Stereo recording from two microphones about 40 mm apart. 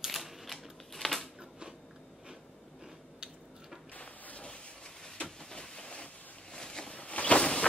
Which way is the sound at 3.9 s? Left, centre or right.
Left.